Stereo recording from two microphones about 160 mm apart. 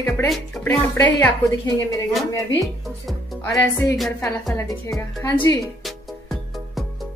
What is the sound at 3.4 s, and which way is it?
A woman's voice, 15° left (ahead or behind).